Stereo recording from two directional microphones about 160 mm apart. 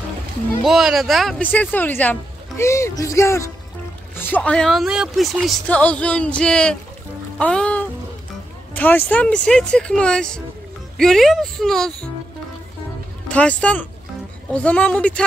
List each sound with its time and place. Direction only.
0.7 s speech: centre (ahead or behind)
1.5 s speech: 10° left (ahead or behind)
13.3 s speech: 10° left (ahead or behind)